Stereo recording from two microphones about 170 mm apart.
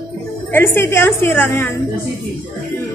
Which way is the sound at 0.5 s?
15° left (ahead or behind).